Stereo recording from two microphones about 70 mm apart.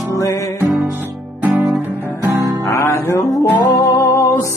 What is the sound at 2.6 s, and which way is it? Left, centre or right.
Music, left.